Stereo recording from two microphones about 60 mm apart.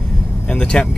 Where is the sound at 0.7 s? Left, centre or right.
Centre.